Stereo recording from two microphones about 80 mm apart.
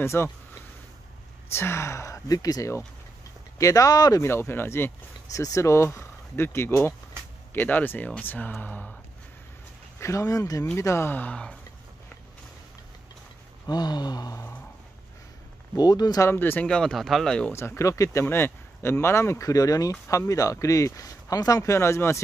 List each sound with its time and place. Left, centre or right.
0.0 s speech: left
1.5 s speech: left
4.2 s speech: left
5.3 s speech: left; by 8.9 s centre
9.9 s speech: left
10.8 s speech: left
11.1 s speech: left
13.7 s a sound: left
15.7 s a sound: left
16.2 s speech: left
16.6 s speech: centre
17.5 s speech: left
18.2 s speech: left
21.7 s speech: left